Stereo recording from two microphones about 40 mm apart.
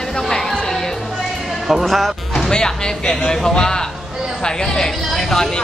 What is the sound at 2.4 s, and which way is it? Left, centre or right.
Speech, centre.